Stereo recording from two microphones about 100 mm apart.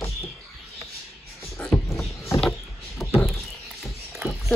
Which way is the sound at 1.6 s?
10° left (ahead or behind).